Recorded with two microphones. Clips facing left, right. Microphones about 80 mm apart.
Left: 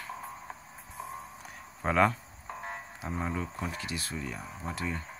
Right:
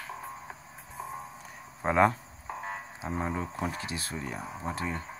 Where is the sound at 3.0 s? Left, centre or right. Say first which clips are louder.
Right 1 dB; right.